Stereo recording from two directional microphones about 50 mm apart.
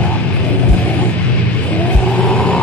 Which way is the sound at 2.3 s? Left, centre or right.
Centre.